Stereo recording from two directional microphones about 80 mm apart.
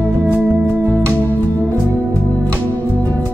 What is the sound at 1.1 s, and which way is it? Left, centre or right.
Music, left.